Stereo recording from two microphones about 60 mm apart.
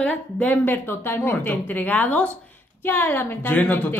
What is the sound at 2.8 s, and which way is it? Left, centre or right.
Speech, left.